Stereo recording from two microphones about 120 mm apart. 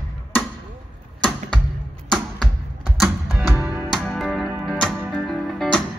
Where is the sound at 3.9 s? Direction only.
Centre (ahead or behind).